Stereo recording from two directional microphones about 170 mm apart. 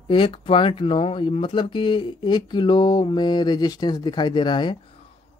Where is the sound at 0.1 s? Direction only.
30° left (ahead or behind).